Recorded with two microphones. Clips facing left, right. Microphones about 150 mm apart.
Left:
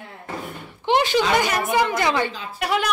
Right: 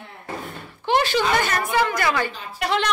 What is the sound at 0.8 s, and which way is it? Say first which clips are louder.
Speech: left 1 dB; 20° left (ahead or behind).